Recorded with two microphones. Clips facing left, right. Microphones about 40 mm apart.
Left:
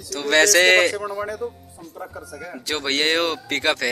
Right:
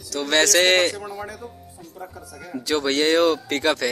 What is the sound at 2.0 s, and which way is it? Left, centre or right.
Speech, centre.